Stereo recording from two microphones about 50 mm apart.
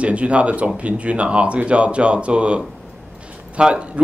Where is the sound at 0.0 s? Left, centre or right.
Right.